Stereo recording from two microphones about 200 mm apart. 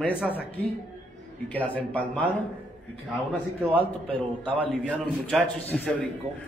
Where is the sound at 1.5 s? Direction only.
10° left (ahead or behind).